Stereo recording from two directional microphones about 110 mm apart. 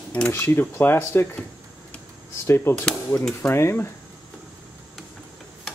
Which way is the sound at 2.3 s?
25° left (ahead or behind).